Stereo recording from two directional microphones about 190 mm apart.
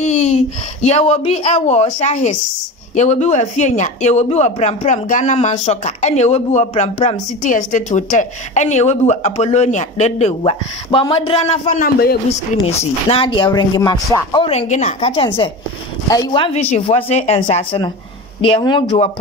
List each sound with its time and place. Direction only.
0.0 s a sound: 35° left (ahead or behind)
0.8 s speech: 35° left (ahead or behind)
11.8 s a man's voice: 55° left (ahead or behind)
12.3 s speech: 30° left (ahead or behind)